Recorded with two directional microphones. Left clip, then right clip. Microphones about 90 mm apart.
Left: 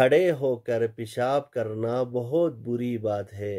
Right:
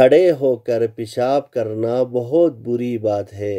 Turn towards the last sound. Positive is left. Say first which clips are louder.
# right 8 dB
turn(degrees=-35)  # may be behind; listen again after turning